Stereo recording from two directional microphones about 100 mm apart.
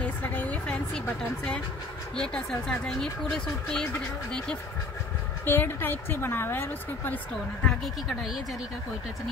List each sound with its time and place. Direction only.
0.0 s a sound: 15° left (ahead or behind)
2.1 s speech: 10° left (ahead or behind)
5.4 s a woman's voice: 20° left (ahead or behind)
7.6 s speech: centre (ahead or behind)